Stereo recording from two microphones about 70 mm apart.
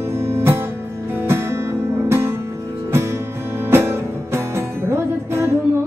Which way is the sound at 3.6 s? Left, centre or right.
Right.